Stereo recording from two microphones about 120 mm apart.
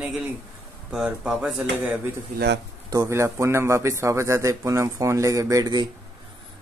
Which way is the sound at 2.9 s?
25° right (ahead or behind).